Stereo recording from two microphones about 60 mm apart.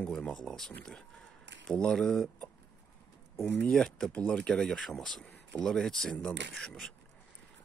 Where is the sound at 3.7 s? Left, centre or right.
Centre.